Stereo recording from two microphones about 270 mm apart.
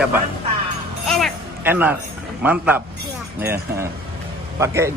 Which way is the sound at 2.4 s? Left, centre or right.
Centre.